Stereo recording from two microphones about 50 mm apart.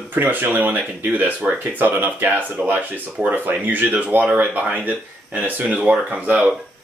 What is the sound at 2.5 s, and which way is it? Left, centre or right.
Speech, right.